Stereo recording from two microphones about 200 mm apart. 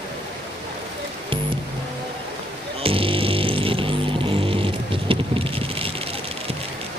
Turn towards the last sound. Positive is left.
turn(degrees=-30)  # may be behind; listen again after turning